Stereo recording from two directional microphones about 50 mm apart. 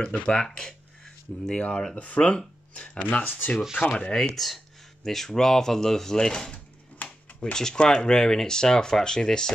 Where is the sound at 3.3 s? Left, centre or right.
Left.